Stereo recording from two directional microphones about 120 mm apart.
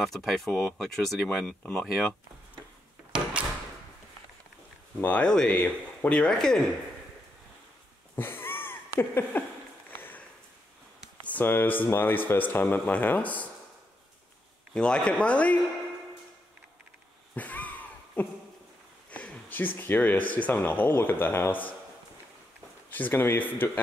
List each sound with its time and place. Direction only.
0.0 s speech: centre (ahead or behind)
5.0 s speech: 10° left (ahead or behind)
8.2 s a sound: 15° left (ahead or behind)
11.2 s speech: 15° left (ahead or behind)
14.7 s speech: 10° left (ahead or behind)
17.3 s a sound: 15° left (ahead or behind)
19.0 s speech: 10° left (ahead or behind)
22.8 s speech: 15° left (ahead or behind)